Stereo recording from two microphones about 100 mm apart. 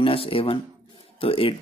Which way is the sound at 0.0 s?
70° left (ahead or behind).